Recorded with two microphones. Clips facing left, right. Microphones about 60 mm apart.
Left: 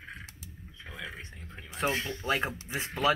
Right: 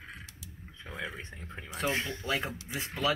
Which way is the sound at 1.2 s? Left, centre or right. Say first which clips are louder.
Right 2 dB; right.